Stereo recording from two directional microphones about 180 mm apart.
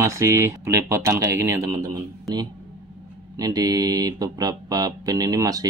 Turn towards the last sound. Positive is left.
turn(degrees=-20)  # may be behind; listen again after turning